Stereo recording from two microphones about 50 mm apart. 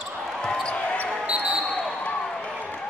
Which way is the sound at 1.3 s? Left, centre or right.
Right.